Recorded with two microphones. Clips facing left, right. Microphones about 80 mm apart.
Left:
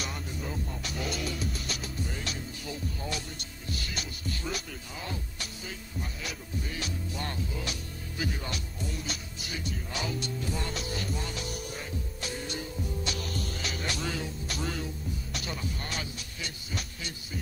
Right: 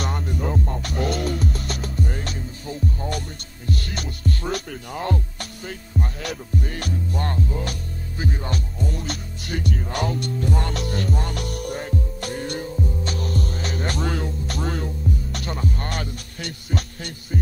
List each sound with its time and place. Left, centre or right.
0.0 s music: right
8.2 s hum: right
8.7 s music: right